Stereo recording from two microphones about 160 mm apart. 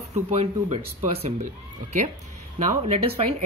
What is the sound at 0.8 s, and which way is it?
Speech, 65° right (ahead or behind).